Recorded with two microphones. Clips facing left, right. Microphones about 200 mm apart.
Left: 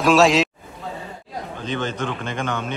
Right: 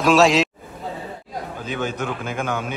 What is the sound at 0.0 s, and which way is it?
Speech, centre (ahead or behind).